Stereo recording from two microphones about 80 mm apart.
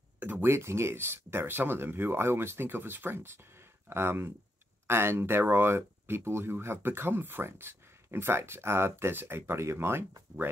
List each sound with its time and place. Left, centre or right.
0.2 s speech: right
10.3 s speech: right